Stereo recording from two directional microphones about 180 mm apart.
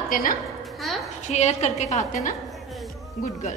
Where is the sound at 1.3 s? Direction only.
40° left (ahead or behind).